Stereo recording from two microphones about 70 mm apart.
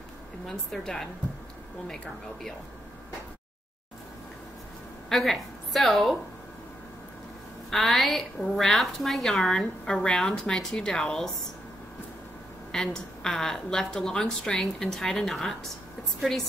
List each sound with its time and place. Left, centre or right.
0.5 s a woman's voice: centre
5.1 s a woman's voice: centre
7.7 s a woman's voice: centre
12.7 s a woman's voice: centre